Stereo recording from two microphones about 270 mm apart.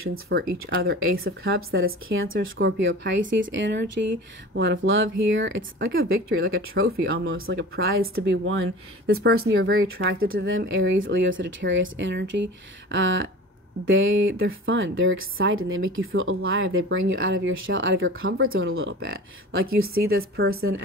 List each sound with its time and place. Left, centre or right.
0.1 s speech: right
1.4 s speech: right
20.4 s speech: right